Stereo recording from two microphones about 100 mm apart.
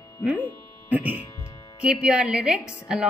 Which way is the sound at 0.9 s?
20° right (ahead or behind).